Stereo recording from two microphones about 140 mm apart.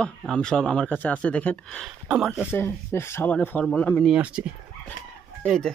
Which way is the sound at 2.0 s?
5° right (ahead or behind).